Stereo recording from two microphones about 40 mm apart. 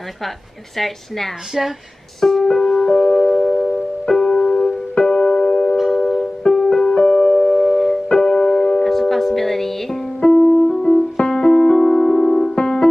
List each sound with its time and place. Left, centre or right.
0.7 s a woman's voice: centre
2.1 s music: centre
5.8 s music: centre
6.4 s music: centre
7.5 s piano: centre
10.3 s music: left
11.1 s piano: centre
12.5 s music: centre